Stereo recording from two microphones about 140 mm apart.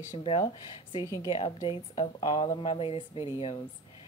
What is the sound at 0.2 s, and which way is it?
Speech, 40° left (ahead or behind).